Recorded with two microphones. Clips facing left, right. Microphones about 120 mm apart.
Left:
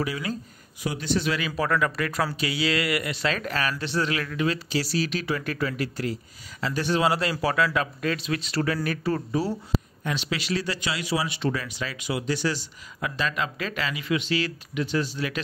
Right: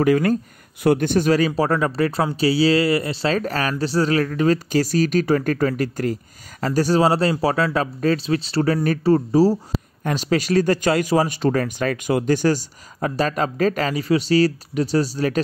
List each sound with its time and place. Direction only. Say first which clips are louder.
0.0 s speech: right 12 dB; 55° right (ahead or behind)
1.5 s speech: right 5 dB; 30° right (ahead or behind)